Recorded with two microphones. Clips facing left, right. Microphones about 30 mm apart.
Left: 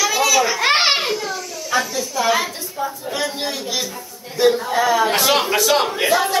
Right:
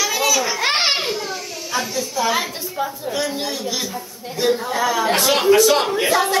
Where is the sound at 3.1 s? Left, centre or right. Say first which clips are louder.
Even; centre.